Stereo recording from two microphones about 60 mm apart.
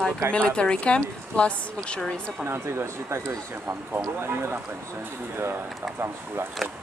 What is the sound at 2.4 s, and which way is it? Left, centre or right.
Speech, right.